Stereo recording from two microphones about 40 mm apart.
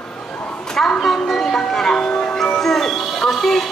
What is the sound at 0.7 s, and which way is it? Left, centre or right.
Music, centre.